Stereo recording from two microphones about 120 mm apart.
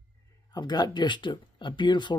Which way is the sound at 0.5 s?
35° left (ahead or behind).